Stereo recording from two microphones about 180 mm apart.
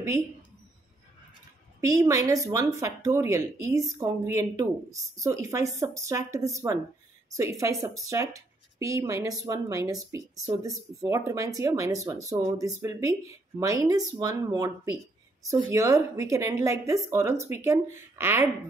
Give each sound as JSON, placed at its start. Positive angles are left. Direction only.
{"t": 1.8, "sound": "speech", "side_deg": -20}